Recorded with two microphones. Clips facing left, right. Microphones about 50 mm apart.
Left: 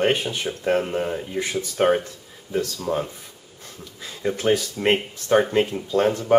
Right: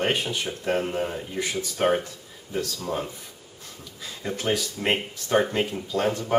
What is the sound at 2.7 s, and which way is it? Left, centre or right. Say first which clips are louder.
Speech: left 4 dB; centre.